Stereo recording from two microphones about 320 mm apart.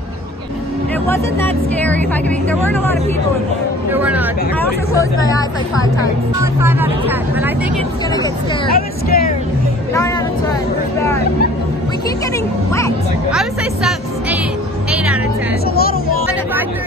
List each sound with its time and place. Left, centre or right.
1.0 s speech: centre
3.9 s speech: centre
4.9 s speech: centre
6.4 s speech: centre
8.6 s speech: left
13.3 s a woman's voice: centre